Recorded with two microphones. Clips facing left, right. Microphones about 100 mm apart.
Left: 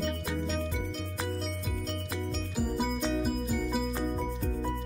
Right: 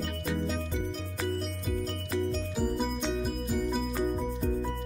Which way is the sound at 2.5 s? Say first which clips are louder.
Right 1 dB; centre (ahead or behind).